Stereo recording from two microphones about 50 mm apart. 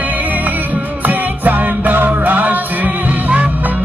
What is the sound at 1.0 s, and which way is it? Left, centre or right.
Music, right.